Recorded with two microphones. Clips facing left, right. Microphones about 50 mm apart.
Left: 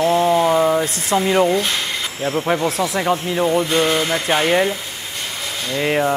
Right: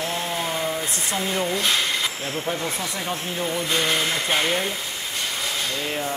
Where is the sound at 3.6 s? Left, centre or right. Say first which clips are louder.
Left 5 dB; left.